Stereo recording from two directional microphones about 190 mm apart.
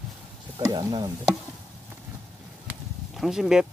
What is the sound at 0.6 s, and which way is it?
Speech, 20° right (ahead or behind).